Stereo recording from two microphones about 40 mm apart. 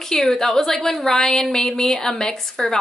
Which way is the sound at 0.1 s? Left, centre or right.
Centre.